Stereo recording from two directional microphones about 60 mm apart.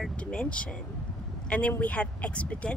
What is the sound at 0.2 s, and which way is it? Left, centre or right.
Speech, centre.